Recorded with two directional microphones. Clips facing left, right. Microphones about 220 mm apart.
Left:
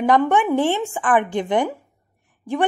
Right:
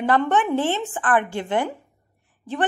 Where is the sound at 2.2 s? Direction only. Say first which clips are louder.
Left 4 dB; 10° left (ahead or behind).